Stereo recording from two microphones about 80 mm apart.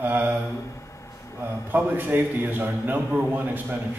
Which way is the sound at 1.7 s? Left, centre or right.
Right.